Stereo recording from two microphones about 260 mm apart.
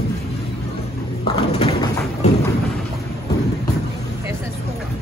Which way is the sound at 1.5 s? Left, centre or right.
Left.